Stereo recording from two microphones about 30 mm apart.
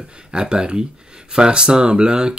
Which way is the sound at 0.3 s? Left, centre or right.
Right.